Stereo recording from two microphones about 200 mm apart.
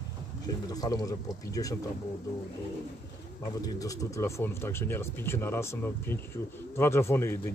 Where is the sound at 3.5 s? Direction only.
15° left (ahead or behind).